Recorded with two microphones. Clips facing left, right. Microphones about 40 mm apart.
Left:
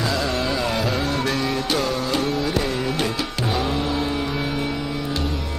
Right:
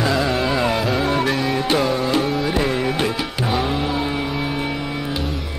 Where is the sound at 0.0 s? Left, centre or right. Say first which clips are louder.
Right 4 dB; centre.